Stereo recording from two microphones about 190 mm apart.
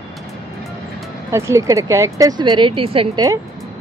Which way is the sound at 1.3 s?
15° right (ahead or behind).